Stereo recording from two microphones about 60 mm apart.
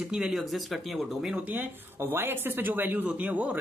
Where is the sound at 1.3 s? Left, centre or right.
Right.